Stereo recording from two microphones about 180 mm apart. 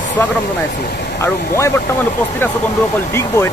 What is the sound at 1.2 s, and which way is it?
Speech, 15° left (ahead or behind).